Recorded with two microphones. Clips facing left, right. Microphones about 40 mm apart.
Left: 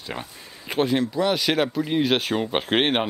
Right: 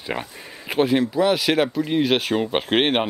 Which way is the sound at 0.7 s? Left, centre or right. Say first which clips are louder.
Right 3 dB; centre.